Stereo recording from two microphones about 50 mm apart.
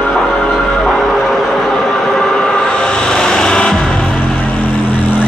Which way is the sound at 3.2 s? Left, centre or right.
Centre.